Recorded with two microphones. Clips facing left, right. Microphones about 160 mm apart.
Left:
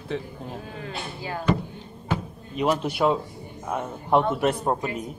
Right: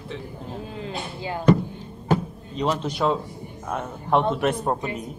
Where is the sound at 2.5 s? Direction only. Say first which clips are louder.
Left 1 dB; 10° left (ahead or behind).